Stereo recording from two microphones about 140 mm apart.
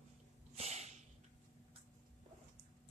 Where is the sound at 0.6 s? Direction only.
50° right (ahead or behind).